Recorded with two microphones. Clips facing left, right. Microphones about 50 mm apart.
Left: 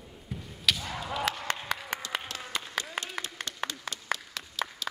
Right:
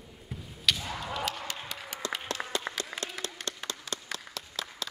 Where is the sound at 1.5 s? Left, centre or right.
Left.